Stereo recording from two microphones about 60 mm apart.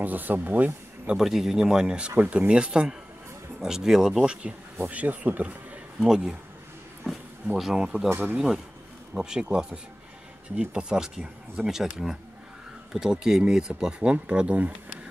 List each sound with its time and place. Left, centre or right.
0.0 s speech: right
1.0 s a man's voice: centre; by 5.8 s right
5.9 s speech: centre
7.5 s speech: centre
8.1 s speech: right
9.2 s speech: centre